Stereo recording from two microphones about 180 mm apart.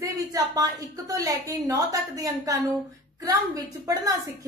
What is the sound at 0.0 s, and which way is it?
A woman's voice, 20° right (ahead or behind).